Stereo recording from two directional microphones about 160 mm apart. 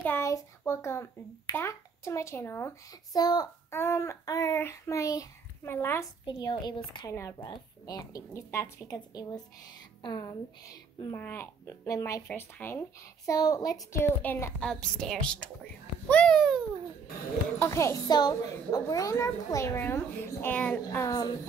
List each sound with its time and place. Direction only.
0.0 s a child's voice: 15° left (ahead or behind)
6.2 s a child's voice: 30° left (ahead or behind)
14.2 s a child's voice: 10° left (ahead or behind)
17.6 s a child's voice: 15° left (ahead or behind)